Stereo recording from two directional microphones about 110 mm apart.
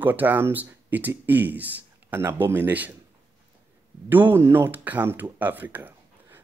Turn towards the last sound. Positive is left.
turn(degrees=-20)  # may be behind; listen again after turning